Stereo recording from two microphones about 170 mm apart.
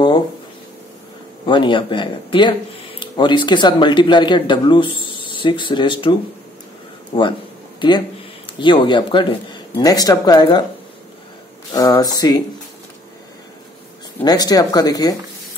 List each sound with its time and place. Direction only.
1.4 s speech: 25° left (ahead or behind)
7.8 s speech: 30° left (ahead or behind)
11.7 s speech: 20° left (ahead or behind)
14.2 s speech: 25° left (ahead or behind)